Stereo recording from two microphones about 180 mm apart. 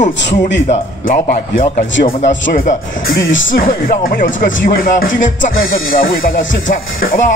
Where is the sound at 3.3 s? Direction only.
90° left.